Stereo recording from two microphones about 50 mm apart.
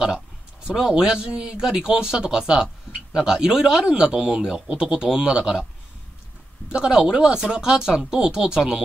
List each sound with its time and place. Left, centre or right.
0.7 s speech: centre
6.7 s speech: centre